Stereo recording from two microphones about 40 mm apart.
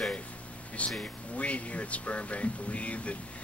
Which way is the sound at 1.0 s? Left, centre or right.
Left.